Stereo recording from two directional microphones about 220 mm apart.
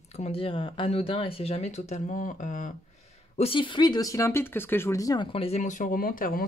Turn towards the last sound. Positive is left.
turn(degrees=40)  # may be behind; listen again after turning